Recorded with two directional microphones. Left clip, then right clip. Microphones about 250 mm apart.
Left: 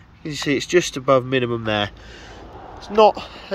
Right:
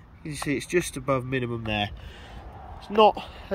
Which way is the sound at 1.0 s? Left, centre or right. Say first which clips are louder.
Left 10 dB; left.